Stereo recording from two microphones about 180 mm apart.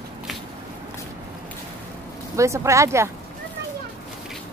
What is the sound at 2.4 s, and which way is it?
Speech, 15° right (ahead or behind).